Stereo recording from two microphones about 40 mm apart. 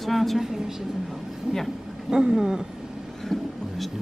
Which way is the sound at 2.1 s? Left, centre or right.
Right.